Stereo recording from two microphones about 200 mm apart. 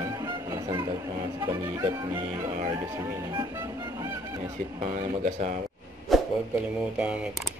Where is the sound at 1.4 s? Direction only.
20° right (ahead or behind).